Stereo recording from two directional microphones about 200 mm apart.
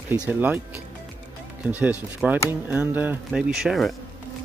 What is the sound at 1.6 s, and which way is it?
Speech, 5° right (ahead or behind).